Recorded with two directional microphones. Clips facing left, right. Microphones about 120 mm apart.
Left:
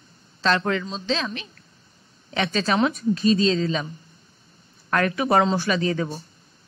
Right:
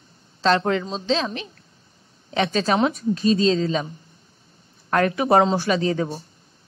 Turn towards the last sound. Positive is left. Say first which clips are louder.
# right 2 dB
turn(degrees=-30)  # may be behind; listen again after turning